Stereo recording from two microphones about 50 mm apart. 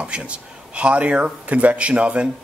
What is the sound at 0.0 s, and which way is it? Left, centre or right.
Speech, right.